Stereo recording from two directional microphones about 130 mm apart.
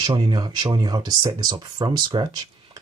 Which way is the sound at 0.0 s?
35° right (ahead or behind).